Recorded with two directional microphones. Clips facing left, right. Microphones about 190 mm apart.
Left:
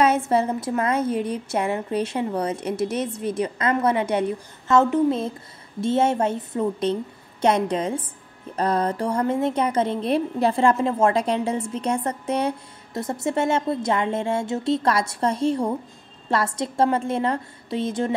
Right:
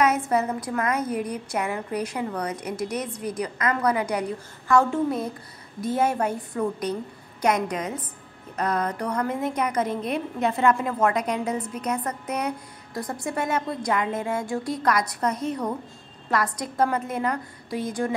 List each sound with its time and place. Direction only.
0.3 s a woman's voice: 30° left (ahead or behind)